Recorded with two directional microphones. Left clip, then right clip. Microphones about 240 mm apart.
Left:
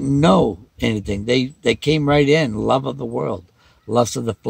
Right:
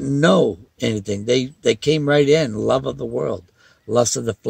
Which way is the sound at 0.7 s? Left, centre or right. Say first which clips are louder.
Even; centre.